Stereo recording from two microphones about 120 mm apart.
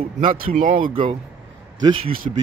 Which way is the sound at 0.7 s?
45° right (ahead or behind).